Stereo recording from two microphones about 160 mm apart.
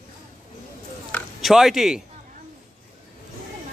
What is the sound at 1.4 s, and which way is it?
Speech, centre (ahead or behind).